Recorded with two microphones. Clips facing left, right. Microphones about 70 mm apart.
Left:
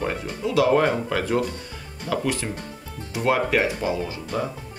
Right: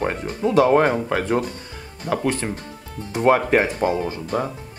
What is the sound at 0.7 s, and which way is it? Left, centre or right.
Speech, right.